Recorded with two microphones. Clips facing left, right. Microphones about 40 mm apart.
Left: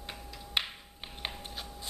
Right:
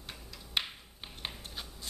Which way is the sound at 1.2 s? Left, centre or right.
Centre.